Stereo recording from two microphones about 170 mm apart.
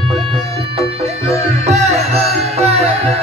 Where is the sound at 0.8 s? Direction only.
35° right (ahead or behind).